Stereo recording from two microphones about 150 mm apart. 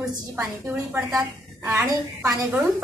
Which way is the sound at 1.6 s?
20° right (ahead or behind).